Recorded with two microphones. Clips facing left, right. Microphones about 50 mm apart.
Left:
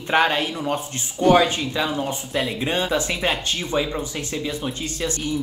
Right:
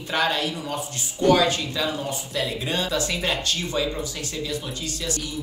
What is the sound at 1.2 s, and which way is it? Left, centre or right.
Speech, left.